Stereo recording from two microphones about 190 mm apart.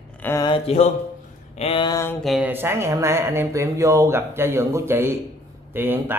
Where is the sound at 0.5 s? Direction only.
35° left (ahead or behind).